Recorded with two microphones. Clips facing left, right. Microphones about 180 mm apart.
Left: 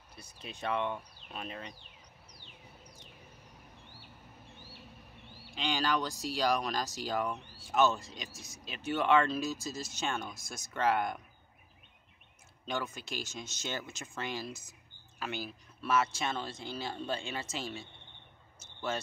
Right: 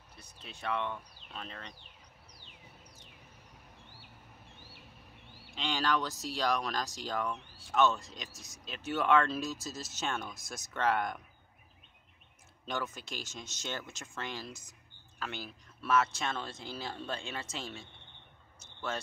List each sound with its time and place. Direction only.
0.2 s speech: 15° left (ahead or behind)
5.5 s speech: centre (ahead or behind)
12.6 s speech: centre (ahead or behind)